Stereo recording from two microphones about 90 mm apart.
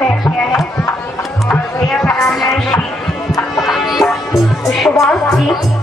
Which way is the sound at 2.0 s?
30° left (ahead or behind).